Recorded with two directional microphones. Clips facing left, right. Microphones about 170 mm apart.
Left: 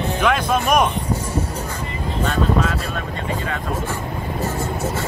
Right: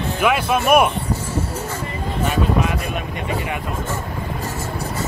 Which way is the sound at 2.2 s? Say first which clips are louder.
Even; 15° right (ahead or behind).